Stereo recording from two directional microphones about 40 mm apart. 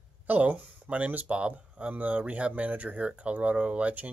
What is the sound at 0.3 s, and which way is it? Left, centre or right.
Speech, right.